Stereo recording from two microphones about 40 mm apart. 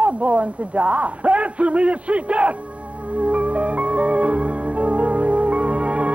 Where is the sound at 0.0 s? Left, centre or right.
Right.